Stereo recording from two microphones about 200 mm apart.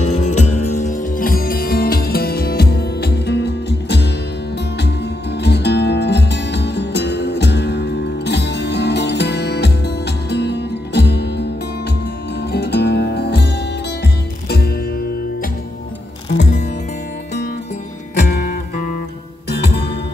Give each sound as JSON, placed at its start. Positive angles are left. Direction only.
{"t": 0.0, "sound": "music", "side_deg": 35}
{"t": 5.4, "sound": "music", "side_deg": 55}
{"t": 12.5, "sound": "music", "side_deg": 55}
{"t": 18.2, "sound": "music", "side_deg": 45}